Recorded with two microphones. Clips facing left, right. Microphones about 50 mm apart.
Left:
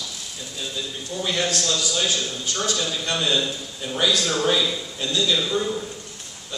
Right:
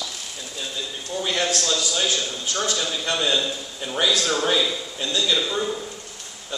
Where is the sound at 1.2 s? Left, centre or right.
Centre.